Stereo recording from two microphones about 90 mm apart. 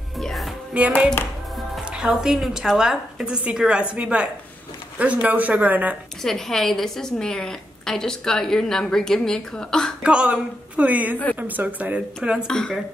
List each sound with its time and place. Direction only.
0.2 s music: centre (ahead or behind)
0.7 s a woman's voice: 15° right (ahead or behind)
6.2 s a woman's voice: 5° left (ahead or behind)
10.0 s a woman's voice: 10° right (ahead or behind)
12.4 s a woman's voice: 5° left (ahead or behind)